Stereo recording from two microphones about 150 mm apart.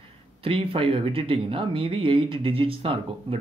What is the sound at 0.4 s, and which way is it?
Speech, 35° right (ahead or behind).